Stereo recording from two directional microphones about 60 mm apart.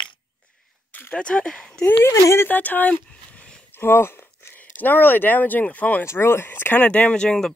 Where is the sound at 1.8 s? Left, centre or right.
Left.